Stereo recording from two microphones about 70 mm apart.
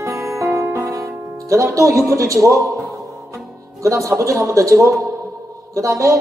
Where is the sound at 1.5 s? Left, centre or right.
Right.